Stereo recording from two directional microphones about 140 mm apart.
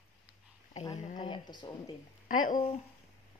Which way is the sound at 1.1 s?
35° left (ahead or behind).